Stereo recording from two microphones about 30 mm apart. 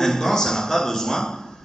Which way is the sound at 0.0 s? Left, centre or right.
Centre.